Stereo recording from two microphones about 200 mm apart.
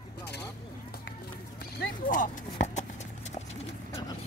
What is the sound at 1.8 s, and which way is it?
Speech, 40° left (ahead or behind).